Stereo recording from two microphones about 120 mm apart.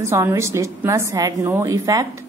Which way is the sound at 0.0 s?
25° right (ahead or behind).